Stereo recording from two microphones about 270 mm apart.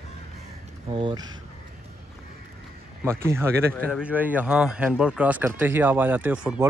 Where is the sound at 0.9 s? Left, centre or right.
Centre.